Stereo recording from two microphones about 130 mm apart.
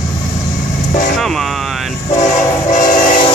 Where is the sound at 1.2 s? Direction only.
Centre (ahead or behind).